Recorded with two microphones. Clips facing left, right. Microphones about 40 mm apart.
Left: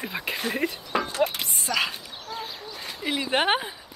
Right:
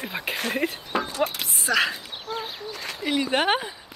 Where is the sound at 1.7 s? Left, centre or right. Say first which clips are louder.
Right 4 dB; right.